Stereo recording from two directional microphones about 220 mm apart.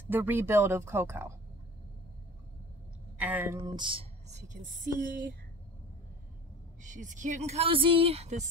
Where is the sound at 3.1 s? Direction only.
5° right (ahead or behind); by 5.4 s 40° right (ahead or behind).